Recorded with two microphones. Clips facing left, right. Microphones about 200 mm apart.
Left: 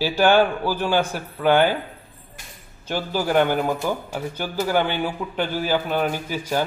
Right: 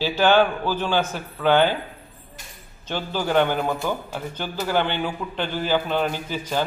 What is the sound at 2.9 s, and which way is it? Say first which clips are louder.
A man's voice: left 1 dB; 10° left (ahead or behind).